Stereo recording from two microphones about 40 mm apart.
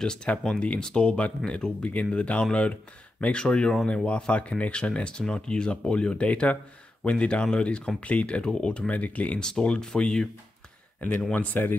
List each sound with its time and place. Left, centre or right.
0.0 s speech: centre
2.0 s speech: left
8.9 s speech: left
9.4 s speech: left
11.0 s speech: left